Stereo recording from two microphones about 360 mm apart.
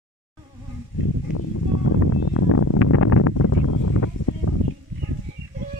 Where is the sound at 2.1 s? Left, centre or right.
Left.